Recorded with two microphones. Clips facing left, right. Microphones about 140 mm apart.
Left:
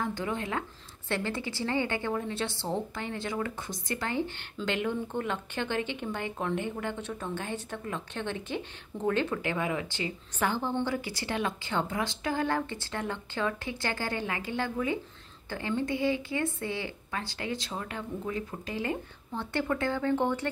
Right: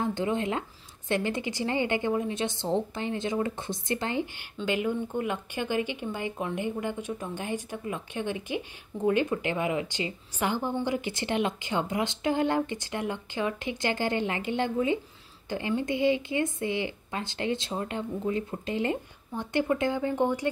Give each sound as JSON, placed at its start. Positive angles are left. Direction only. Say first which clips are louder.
{"t": 0.0, "sound": "a woman's voice", "louder": "right 4 dB", "side_deg": -20}